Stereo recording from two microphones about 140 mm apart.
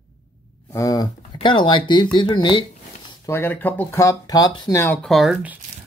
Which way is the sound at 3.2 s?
15° left (ahead or behind).